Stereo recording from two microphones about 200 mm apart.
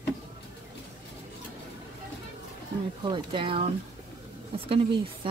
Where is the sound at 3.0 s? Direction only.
25° right (ahead or behind).